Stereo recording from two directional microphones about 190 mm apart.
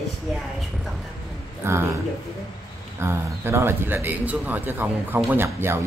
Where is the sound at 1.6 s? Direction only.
15° right (ahead or behind).